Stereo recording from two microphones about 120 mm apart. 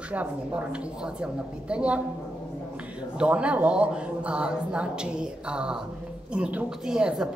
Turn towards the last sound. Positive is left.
turn(degrees=-5)  # may be behind; listen again after turning